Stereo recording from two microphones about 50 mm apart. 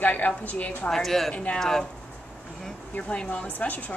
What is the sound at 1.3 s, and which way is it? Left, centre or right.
Speech, left.